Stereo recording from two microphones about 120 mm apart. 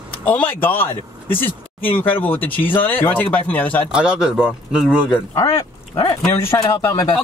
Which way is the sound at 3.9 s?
5° right (ahead or behind).